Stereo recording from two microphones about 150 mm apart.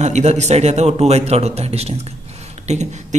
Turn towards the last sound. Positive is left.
turn(degrees=-50)  # may be behind; listen again after turning